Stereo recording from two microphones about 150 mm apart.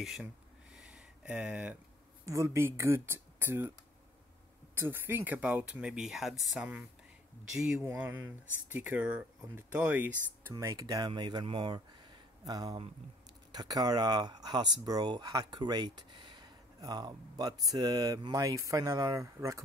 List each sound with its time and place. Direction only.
0.0 s speech: centre (ahead or behind)
0.7 s a sound: 5° right (ahead or behind)
2.2 s speech: 20° right (ahead or behind)
4.7 s speech: 15° right (ahead or behind)
7.8 s speech: 15° right (ahead or behind)
10.6 s speech: 20° right (ahead or behind)
11.1 s mantra: 30° right (ahead or behind)
12.4 s speech: 25° right (ahead or behind)